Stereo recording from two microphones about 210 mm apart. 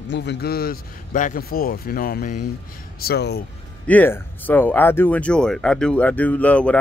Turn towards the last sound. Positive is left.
turn(degrees=5)  # may be behind; listen again after turning